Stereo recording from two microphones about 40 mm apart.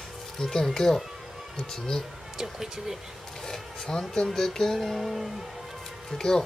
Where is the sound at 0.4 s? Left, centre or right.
Centre.